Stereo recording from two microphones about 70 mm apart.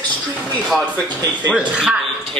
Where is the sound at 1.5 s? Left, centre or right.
Centre.